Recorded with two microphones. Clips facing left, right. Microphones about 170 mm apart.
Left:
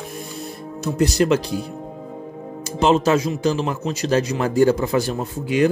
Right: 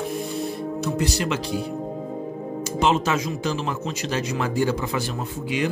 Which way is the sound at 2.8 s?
35° left (ahead or behind).